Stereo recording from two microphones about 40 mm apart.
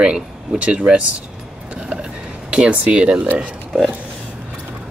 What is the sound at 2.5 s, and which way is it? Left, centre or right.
Speech, right.